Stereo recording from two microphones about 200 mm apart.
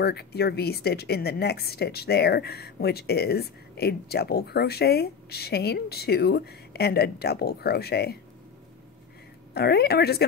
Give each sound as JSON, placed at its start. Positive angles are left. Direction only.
{"t": 0.0, "sound": "a woman's voice", "side_deg": 55}
{"t": 9.5, "sound": "a woman's voice", "side_deg": 55}